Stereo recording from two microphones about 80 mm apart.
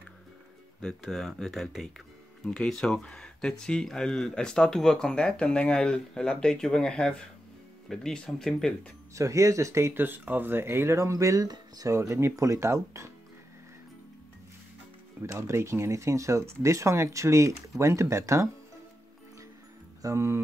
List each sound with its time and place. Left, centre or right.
0.7 s speech: centre
9.1 s speech: right
11.9 s speech: right
15.2 s speech: right
20.0 s speech: right